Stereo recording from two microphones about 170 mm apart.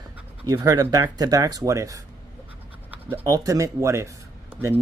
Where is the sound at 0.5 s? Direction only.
20° right (ahead or behind).